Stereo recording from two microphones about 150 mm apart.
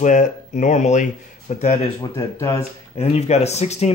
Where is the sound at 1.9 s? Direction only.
20° left (ahead or behind).